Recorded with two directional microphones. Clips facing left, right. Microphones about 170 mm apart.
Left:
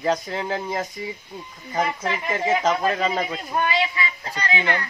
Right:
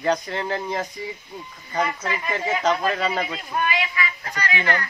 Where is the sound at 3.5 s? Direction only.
25° left (ahead or behind).